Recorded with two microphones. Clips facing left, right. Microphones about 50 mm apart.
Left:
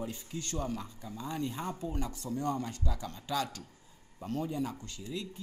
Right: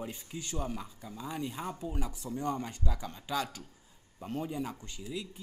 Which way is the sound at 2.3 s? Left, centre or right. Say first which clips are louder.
Left 1 dB; right.